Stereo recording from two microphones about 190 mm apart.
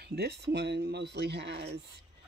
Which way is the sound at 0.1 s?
60° right (ahead or behind).